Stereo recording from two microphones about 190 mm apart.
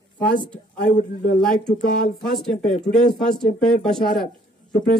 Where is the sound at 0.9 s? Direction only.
40° left (ahead or behind).